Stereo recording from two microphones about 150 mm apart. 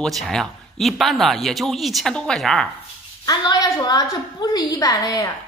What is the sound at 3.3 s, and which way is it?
A woman's voice, 25° left (ahead or behind).